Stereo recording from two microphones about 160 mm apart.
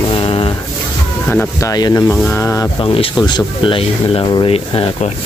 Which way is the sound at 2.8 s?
35° left (ahead or behind).